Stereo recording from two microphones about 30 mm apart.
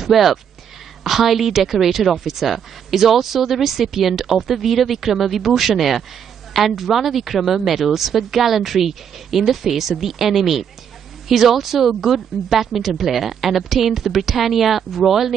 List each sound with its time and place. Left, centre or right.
0.0 s a woman's voice: centre